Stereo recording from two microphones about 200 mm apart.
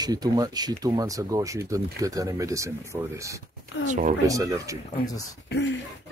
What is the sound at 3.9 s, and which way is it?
Speech, 40° right (ahead or behind).